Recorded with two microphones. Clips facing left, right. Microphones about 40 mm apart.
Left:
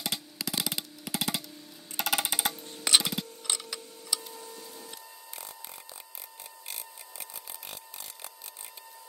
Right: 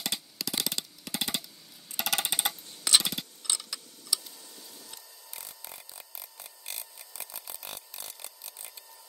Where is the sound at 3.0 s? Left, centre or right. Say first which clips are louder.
Left 1 dB; centre.